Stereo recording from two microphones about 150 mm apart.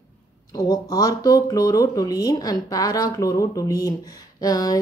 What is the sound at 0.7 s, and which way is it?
A woman's voice, 25° left (ahead or behind).